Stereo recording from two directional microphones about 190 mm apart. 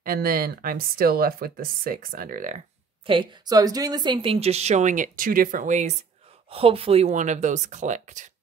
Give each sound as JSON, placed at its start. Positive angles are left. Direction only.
{"t": 0.0, "sound": "speech", "side_deg": -50}
{"t": 3.1, "sound": "a woman's voice", "side_deg": -25}